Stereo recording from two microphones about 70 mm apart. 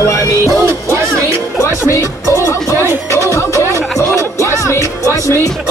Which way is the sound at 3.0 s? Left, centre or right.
Left.